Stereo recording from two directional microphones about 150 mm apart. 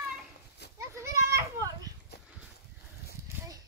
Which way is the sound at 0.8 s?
20° right (ahead or behind).